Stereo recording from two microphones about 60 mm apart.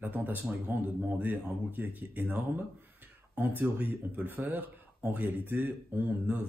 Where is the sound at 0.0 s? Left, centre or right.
Right.